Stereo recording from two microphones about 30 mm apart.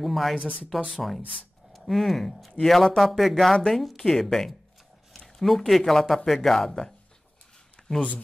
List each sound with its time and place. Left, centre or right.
0.0 s speech: centre
3.1 s speech: centre
5.2 s a sound: centre
5.7 s speech: centre